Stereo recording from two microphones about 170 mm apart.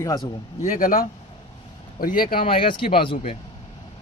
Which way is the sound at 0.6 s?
55° left (ahead or behind).